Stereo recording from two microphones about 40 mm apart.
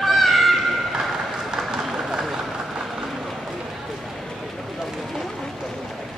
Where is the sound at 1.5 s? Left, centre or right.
Centre.